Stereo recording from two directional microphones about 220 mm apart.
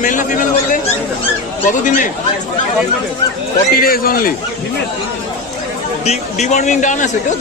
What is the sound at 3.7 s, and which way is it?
Speech, 40° left (ahead or behind).